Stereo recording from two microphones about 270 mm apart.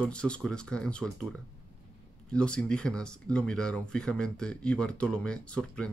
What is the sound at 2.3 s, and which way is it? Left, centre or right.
Speech, centre.